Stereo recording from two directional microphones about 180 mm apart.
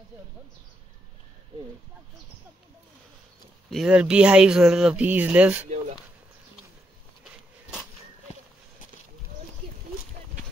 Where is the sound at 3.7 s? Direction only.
5° right (ahead or behind).